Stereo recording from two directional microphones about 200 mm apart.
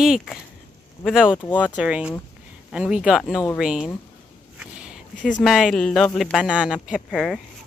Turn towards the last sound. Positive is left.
turn(degrees=0)  # may be behind; listen again after turning